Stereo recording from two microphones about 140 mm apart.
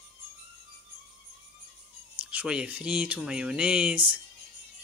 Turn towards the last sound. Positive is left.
turn(degrees=-5)  # may be behind; listen again after turning